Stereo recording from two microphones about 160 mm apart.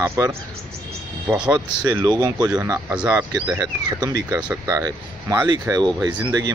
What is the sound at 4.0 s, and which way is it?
Speech, 20° right (ahead or behind).